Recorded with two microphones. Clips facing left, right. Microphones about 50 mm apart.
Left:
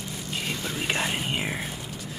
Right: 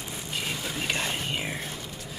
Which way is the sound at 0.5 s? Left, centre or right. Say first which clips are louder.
Left 3 dB; centre.